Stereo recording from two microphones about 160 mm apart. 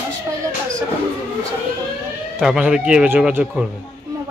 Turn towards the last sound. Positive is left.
turn(degrees=-10)  # may be behind; listen again after turning